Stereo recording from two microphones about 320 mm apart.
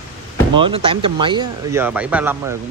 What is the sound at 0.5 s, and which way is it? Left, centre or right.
Speech, centre.